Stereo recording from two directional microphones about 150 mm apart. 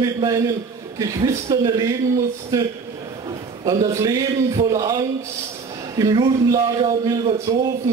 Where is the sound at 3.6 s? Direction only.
25° right (ahead or behind).